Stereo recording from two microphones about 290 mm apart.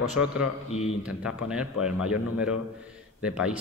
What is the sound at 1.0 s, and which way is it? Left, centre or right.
Speech, centre.